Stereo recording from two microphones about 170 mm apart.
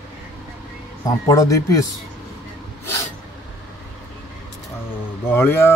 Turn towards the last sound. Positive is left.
turn(degrees=15)  # may be behind; listen again after turning